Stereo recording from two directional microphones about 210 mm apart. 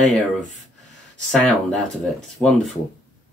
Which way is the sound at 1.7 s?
5° left (ahead or behind).